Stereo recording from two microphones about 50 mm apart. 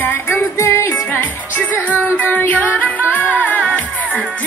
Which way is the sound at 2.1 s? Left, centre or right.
Left.